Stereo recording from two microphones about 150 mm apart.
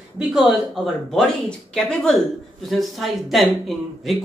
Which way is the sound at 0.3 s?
Centre (ahead or behind).